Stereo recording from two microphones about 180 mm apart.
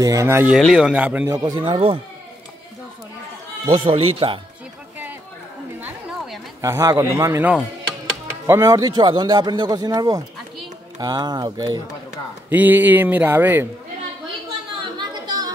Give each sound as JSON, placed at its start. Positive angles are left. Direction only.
{"t": 0.0, "sound": "speech", "side_deg": -15}
{"t": 0.6, "sound": "speech", "side_deg": 0}
{"t": 1.3, "sound": "a man's voice", "side_deg": -25}
{"t": 3.7, "sound": "a man's voice", "side_deg": -30}
{"t": 5.8, "sound": "chatter", "side_deg": -5}
{"t": 6.6, "sound": "a man's voice", "side_deg": -15}
{"t": 12.4, "sound": "speech", "side_deg": -10}
{"t": 14.8, "sound": "chatter", "side_deg": -25}